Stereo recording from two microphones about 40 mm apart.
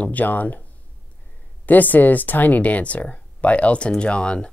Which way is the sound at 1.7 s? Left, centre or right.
Left.